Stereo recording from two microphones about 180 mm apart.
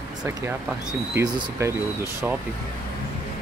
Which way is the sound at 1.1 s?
20° right (ahead or behind).